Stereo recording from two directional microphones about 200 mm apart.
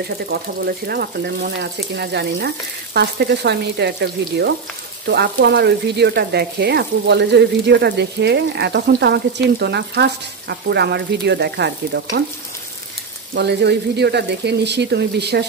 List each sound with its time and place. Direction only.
0.3 s speech: 50° right (ahead or behind)
13.3 s speech: 55° right (ahead or behind)